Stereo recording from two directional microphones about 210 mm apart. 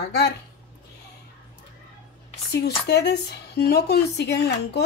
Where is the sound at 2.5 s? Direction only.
50° left (ahead or behind).